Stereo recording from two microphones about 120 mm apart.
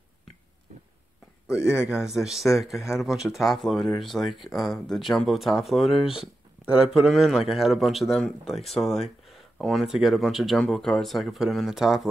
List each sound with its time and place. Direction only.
1.6 s a man's voice: 25° left (ahead or behind)
1.9 s speech: 5° right (ahead or behind)